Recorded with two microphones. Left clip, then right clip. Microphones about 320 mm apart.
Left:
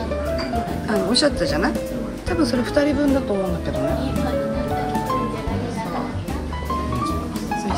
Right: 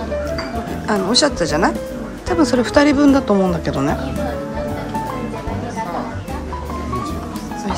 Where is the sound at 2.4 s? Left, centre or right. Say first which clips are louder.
Right 6 dB; centre.